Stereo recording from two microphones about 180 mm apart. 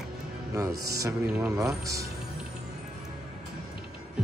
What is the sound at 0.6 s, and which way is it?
Speech, 20° right (ahead or behind).